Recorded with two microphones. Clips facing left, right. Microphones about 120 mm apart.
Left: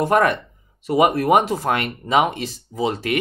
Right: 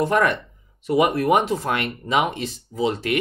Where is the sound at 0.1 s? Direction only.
50° left (ahead or behind).